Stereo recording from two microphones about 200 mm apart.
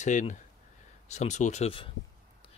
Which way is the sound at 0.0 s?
40° left (ahead or behind).